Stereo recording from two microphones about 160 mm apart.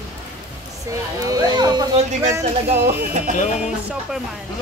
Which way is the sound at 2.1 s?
45° right (ahead or behind).